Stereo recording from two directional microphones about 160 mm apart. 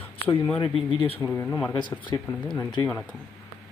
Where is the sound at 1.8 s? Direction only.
30° left (ahead or behind).